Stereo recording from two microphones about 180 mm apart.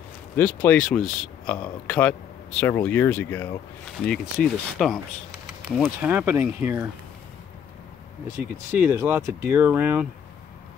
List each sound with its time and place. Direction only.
0.4 s speech: 10° left (ahead or behind)
4.4 s speech: centre (ahead or behind)
8.4 s speech: 10° right (ahead or behind)